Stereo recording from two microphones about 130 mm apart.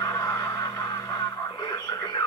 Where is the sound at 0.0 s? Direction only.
25° left (ahead or behind).